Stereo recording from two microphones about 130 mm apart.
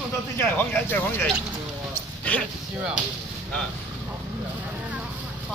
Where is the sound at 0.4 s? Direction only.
15° left (ahead or behind).